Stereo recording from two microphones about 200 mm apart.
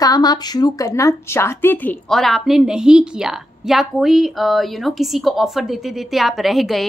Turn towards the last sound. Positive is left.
turn(degrees=0)  # may be behind; listen again after turning